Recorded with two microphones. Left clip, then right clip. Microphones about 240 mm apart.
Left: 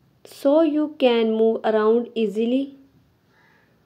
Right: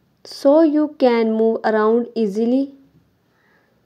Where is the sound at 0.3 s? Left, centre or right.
Right.